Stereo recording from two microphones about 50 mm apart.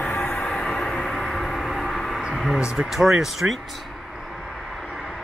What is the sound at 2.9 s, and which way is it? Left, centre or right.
Speech, centre.